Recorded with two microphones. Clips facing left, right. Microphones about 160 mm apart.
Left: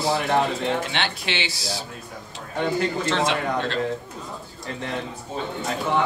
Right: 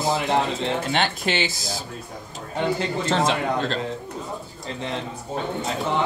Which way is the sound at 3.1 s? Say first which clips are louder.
Right 1 dB; 45° right (ahead or behind).